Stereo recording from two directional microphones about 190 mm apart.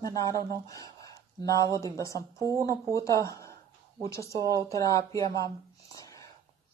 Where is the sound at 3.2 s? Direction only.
15° left (ahead or behind).